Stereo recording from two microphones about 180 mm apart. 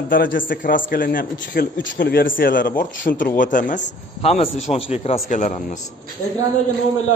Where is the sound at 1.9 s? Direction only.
65° left (ahead or behind); by 3.8 s 45° left (ahead or behind).